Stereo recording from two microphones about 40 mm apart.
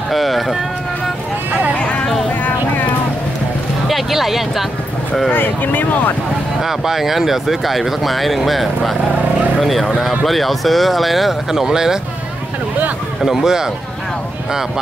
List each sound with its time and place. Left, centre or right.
0.1 s run: centre
3.8 s a sound: centre
5.3 s speech: left
6.6 s speech: centre
11.6 s speech: centre
13.2 s speech: centre